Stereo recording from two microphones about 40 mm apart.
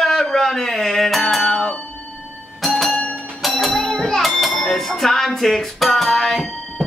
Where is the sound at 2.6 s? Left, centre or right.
Centre.